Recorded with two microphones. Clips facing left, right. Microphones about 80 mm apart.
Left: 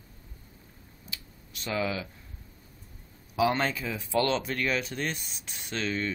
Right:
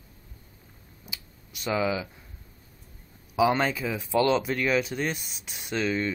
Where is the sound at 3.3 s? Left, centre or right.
Centre.